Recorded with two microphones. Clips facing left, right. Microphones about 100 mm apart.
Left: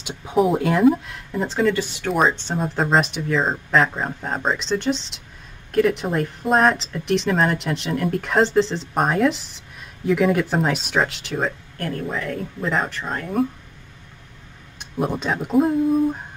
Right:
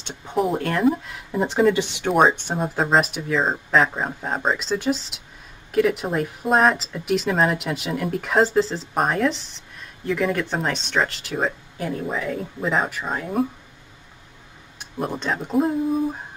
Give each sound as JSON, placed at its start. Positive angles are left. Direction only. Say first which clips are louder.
{"t": 0.0, "sound": "speech", "louder": "left 4 dB", "side_deg": 5}
{"t": 1.6, "sound": "speech", "louder": "right 2 dB", "side_deg": -20}
{"t": 2.6, "sound": "speech", "louder": "even", "side_deg": 0}
{"t": 14.8, "sound": "speech", "louder": "left 3 dB", "side_deg": 5}